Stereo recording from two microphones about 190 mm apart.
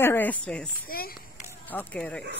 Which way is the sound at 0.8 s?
50° left (ahead or behind).